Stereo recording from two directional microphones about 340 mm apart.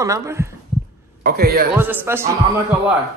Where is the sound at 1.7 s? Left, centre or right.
Centre.